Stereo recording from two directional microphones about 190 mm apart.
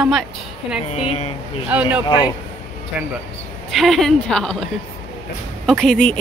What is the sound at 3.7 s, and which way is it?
Speech, centre (ahead or behind).